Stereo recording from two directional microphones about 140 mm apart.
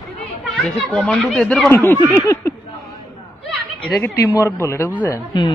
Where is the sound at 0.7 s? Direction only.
5° left (ahead or behind).